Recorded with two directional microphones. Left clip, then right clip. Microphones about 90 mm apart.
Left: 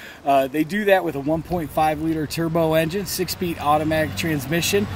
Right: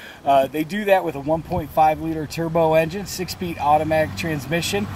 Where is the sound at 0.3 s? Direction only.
35° left (ahead or behind).